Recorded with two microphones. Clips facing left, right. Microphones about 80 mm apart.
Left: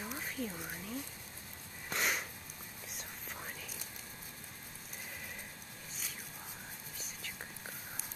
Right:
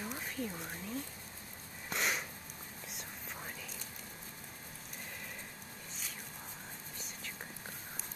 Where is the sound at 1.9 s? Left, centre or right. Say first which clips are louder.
Even; centre.